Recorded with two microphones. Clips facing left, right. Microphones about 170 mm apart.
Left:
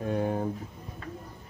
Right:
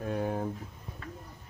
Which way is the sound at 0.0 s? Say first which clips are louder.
Left 3 dB; centre (ahead or behind).